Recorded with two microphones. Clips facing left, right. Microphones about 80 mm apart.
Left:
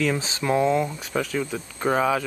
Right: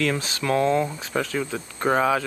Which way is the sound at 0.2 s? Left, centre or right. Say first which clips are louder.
Even; left.